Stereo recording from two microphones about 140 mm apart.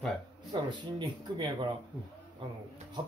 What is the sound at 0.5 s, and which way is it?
Speech, 35° right (ahead or behind).